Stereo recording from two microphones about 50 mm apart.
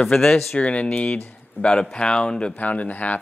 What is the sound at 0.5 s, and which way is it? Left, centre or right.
Speech, left.